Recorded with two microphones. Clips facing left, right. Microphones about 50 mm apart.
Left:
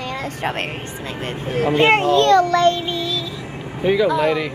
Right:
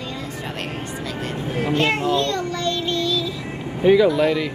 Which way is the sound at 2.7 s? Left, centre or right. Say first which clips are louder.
Right 1 dB; centre.